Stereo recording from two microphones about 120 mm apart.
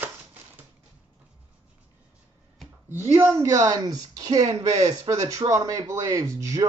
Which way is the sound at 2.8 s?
20° right (ahead or behind).